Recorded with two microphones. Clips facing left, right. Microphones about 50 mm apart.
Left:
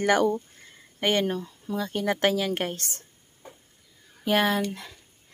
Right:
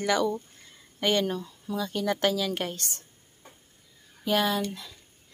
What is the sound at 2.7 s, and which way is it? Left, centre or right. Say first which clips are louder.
Speech: left 1 dB; left.